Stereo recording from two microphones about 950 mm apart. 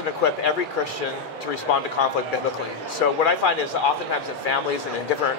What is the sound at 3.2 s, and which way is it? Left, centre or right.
Speech, left.